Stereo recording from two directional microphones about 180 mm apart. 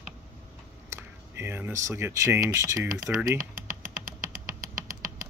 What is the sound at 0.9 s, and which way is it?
Speech, 10° right (ahead or behind).